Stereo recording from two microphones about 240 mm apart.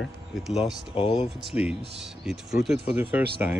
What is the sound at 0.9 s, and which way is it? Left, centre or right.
Speech, left.